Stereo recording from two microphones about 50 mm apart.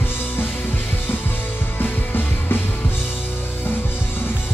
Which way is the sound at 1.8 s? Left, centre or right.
Left.